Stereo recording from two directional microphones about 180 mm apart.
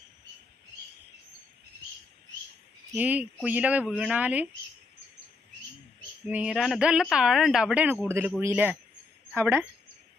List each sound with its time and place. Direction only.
2.9 s speech: 10° right (ahead or behind)
6.2 s speech: 5° right (ahead or behind)